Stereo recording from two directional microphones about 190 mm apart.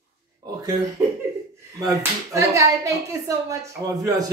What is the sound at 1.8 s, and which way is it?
A woman's voice, 15° right (ahead or behind).